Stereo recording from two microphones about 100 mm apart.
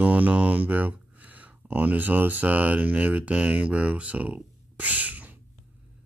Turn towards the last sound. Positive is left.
turn(degrees=-15)  # may be behind; listen again after turning